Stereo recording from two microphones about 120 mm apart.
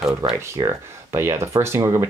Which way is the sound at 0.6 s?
20° right (ahead or behind).